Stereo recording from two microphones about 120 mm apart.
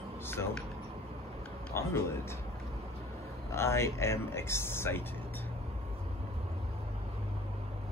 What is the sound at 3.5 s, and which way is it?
Speech, 20° left (ahead or behind).